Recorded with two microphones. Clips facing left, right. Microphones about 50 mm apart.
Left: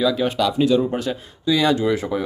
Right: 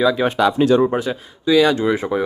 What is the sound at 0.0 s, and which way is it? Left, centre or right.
Speech, right.